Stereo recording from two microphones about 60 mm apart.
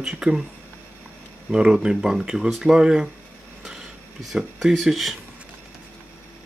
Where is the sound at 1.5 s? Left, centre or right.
Centre.